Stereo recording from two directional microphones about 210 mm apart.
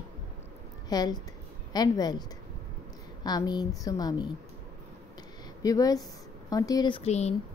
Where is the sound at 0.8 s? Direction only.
20° left (ahead or behind).